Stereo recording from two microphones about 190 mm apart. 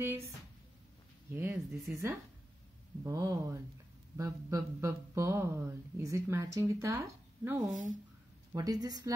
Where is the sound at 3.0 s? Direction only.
15° right (ahead or behind).